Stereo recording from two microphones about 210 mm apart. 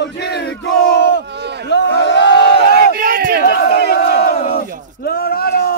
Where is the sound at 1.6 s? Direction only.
55° left (ahead or behind).